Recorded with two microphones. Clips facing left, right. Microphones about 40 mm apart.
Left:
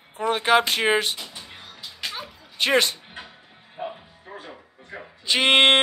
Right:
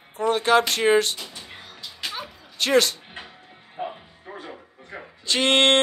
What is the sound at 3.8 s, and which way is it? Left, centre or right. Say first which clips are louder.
Music: right 1 dB; centre.